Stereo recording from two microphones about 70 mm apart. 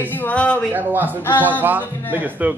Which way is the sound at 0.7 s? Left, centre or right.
Right.